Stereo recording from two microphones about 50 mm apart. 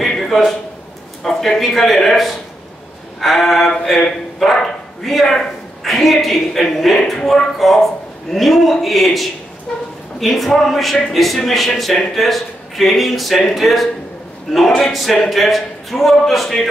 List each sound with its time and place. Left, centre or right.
0.0 s a sound: centre
1.2 s a man's voice: centre
9.7 s speech: centre
10.2 s a man's voice: centre